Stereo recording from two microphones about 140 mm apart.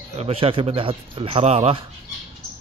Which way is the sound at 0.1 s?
45° right (ahead or behind).